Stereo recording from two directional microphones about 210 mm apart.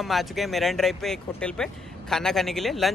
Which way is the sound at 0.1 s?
Centre (ahead or behind).